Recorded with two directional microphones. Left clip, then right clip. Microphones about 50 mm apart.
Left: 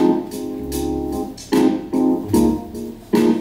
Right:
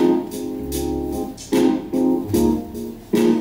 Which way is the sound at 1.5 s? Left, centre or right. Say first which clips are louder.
Left 1 dB; left.